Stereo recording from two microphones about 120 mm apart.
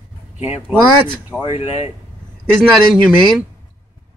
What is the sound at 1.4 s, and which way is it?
Speech, 55° left (ahead or behind).